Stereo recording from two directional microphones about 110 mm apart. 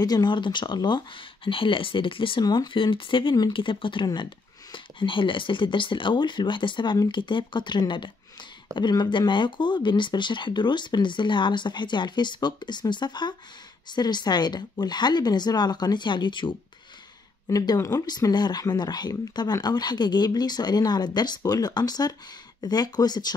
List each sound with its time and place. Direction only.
0.0 s speech: 40° left (ahead or behind)
2.4 s speech: 40° left (ahead or behind)
17.5 s speech: 35° left (ahead or behind)